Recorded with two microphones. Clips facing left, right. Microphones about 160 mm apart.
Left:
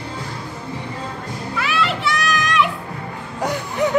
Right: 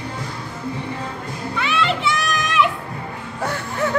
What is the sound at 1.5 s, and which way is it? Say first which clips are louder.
Children playing: right 1 dB; centre (ahead or behind).